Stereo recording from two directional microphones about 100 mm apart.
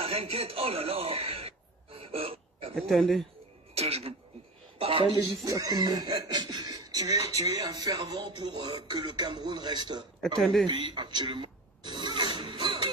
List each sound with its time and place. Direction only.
0.0 s a man's voice: 80° right
2.0 s throat clearing: 70° right (ahead or behind)
2.7 s a man's voice: centre (ahead or behind)
3.7 s a man's voice: 80° right
5.4 s speech: 40° right (ahead or behind)
8.2 s speech: 50° right (ahead or behind)
10.2 s a man's voice: centre (ahead or behind)
10.8 s a sound: 50° right (ahead or behind)